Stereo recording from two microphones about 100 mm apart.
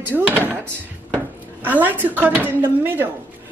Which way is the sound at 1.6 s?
20° right (ahead or behind).